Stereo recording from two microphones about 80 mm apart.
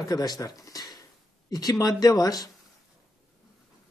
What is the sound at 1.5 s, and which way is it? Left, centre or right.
Speech, left.